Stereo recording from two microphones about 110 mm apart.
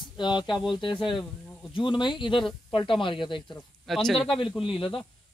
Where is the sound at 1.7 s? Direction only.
45° left (ahead or behind).